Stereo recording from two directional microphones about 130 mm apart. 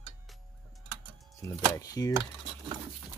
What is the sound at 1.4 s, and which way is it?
Speech, 30° left (ahead or behind).